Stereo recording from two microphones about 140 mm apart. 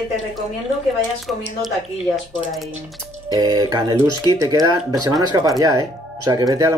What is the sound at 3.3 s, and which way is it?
Speech, 25° right (ahead or behind).